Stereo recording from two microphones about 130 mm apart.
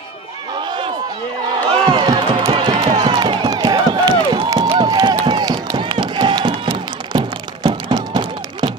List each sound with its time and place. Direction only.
1.9 s music: 35° right (ahead or behind)
4.6 s a sound: 40° right (ahead or behind)
4.8 s run: 30° right (ahead or behind)